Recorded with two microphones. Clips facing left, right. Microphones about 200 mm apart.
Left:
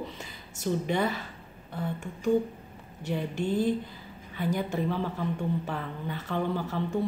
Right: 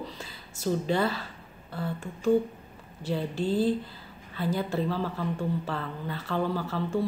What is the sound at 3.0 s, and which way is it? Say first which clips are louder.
A woman's voice: right 1 dB; 20° left (ahead or behind).